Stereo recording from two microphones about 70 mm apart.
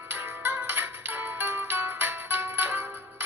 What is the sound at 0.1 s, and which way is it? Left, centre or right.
Music, right.